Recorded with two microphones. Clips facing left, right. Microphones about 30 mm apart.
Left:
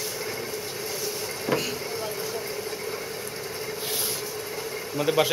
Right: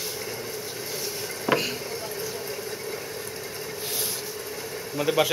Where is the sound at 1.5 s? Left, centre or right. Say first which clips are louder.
Right 3 dB; centre.